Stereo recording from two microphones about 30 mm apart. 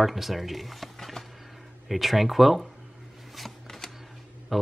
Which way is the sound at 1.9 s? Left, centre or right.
Centre.